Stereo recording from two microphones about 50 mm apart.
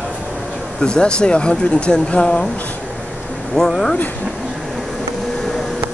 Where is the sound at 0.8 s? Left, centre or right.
Centre.